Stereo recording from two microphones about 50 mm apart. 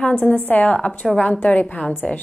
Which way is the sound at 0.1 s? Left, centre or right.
Left.